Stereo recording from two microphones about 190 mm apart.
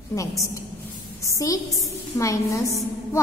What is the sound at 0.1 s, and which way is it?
A woman's voice, 15° left (ahead or behind).